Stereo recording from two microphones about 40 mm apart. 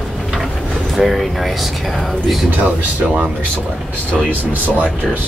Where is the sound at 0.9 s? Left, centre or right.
Centre.